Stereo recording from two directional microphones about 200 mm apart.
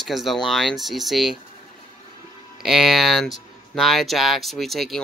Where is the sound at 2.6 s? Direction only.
Centre (ahead or behind).